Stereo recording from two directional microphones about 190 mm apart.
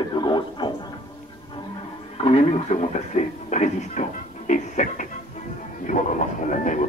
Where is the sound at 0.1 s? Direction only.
25° left (ahead or behind).